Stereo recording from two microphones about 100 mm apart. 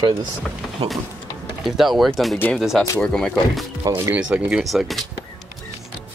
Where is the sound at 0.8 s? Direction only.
90° right.